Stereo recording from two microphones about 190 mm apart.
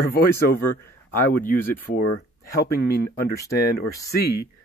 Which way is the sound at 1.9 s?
55° left (ahead or behind).